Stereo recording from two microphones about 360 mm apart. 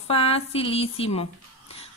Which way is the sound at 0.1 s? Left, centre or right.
Centre.